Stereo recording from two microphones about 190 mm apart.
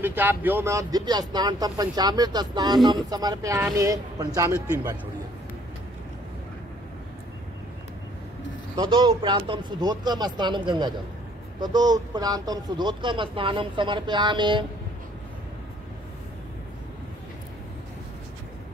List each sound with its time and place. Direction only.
0.0 s speech: 10° right (ahead or behind)
8.7 s speech: 25° right (ahead or behind)